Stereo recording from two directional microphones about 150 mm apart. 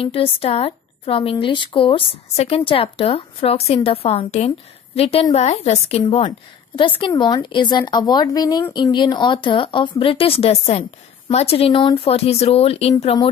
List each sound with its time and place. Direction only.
0.0 s a woman's voice: 40° left (ahead or behind)